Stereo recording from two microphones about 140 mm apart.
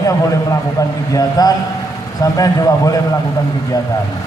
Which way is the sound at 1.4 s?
25° left (ahead or behind).